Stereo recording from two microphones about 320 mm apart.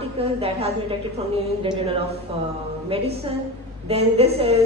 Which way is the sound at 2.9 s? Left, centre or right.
Centre.